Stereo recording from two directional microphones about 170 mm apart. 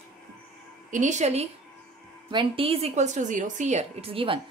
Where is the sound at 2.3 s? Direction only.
30° right (ahead or behind).